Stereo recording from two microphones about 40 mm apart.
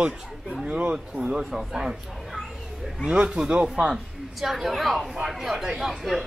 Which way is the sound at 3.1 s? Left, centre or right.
Centre.